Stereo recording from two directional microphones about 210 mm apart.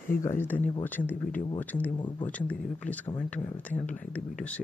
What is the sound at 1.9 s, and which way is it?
Speech, 20° left (ahead or behind).